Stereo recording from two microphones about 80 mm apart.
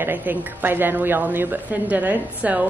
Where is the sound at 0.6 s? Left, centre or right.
Right.